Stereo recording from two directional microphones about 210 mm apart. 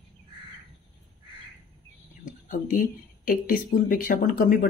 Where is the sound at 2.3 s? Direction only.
40° left (ahead or behind).